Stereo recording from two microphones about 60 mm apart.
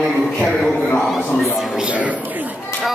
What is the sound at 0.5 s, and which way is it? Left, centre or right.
Speech, centre.